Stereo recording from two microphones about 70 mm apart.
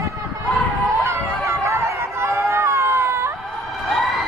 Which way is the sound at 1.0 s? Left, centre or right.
Right.